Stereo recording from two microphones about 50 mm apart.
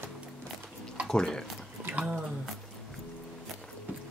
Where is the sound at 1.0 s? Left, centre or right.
Centre.